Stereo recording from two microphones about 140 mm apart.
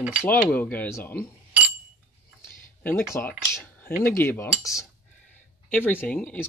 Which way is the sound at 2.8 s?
15° left (ahead or behind).